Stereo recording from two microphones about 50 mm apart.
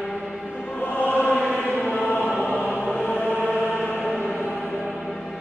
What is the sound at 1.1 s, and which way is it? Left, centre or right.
Chant, left.